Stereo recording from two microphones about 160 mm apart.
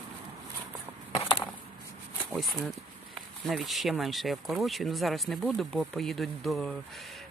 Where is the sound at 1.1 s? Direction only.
35° left (ahead or behind).